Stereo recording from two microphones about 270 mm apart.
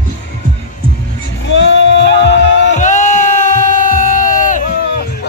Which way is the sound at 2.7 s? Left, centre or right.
Left.